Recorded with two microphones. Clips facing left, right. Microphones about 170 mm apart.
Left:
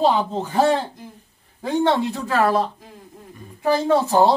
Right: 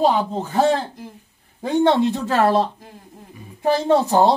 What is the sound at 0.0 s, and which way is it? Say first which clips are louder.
Speech: right 1 dB; 10° right (ahead or behind).